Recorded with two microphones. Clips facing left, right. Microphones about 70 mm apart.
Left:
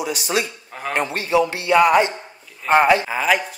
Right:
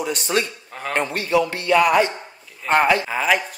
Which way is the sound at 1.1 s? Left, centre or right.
Left.